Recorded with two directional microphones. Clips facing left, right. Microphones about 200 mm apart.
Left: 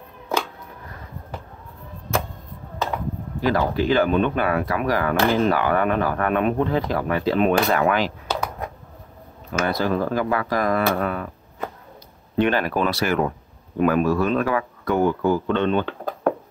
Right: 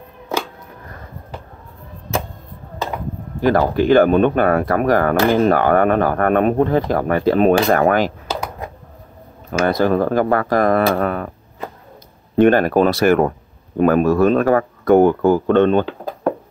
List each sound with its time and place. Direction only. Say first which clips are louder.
3.3 s speech: right 6 dB; 50° right (ahead or behind)
9.5 s speech: right 6 dB; 50° right (ahead or behind)
12.4 s speech: right 8 dB; 50° right (ahead or behind)